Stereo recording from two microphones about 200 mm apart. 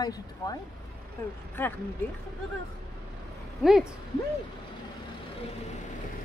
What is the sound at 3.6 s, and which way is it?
Speech, 5° right (ahead or behind).